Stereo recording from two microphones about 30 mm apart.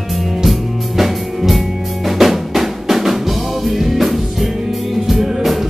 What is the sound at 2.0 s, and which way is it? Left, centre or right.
Drum, centre.